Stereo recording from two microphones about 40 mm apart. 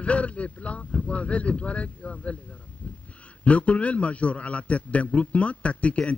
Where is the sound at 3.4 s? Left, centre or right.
Left.